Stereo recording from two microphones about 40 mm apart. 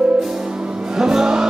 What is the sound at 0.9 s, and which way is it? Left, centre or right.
Music, centre.